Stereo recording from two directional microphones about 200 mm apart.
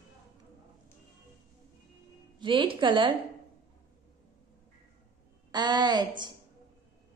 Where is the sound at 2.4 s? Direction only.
25° right (ahead or behind).